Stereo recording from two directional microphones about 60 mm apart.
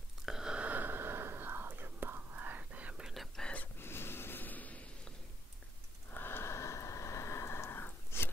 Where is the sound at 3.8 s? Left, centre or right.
Left.